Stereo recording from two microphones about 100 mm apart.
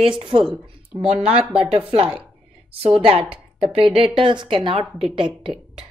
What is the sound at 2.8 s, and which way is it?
Speech, 70° right (ahead or behind).